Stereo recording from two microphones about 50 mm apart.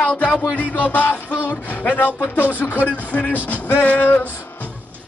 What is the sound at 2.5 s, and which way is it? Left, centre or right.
Music, left.